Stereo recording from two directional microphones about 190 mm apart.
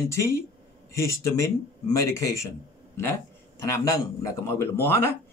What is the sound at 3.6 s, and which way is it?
Speech, 15° left (ahead or behind).